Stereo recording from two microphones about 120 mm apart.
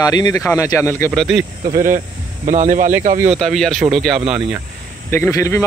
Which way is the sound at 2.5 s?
90° right.